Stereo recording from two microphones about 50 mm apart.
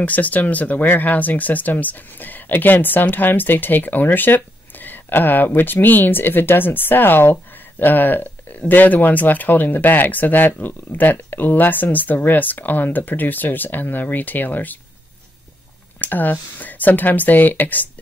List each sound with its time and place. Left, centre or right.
0.0 s speech: left
16.0 s speech: left